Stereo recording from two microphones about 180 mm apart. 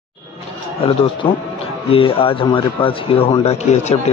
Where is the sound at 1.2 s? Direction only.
25° left (ahead or behind).